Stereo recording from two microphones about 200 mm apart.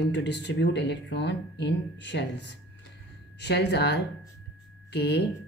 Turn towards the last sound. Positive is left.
turn(degrees=55)  # may be behind; listen again after turning